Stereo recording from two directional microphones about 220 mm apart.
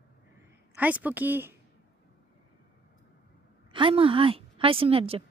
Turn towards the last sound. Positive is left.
turn(degrees=-25)  # may be behind; listen again after turning